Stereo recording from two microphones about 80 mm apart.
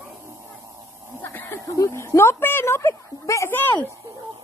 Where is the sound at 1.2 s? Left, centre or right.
Left.